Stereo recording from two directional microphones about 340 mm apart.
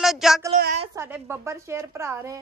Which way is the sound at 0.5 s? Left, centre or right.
Centre.